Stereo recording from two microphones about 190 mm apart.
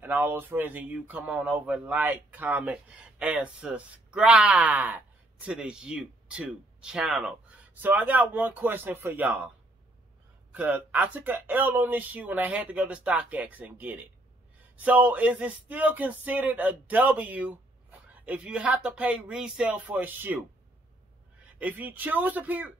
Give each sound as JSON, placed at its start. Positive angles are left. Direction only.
{"t": 0.0, "sound": "speech", "side_deg": -10}
{"t": 10.5, "sound": "speech", "side_deg": -10}
{"t": 21.5, "sound": "speech", "side_deg": -10}